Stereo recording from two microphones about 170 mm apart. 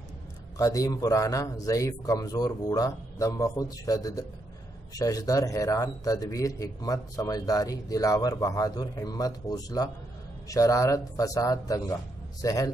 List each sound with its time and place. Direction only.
0.6 s speech: 20° left (ahead or behind)